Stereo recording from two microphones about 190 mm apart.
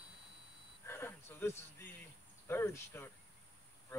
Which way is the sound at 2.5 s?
10° left (ahead or behind).